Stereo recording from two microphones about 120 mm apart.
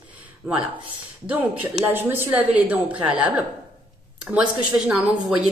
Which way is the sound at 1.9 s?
15° right (ahead or behind).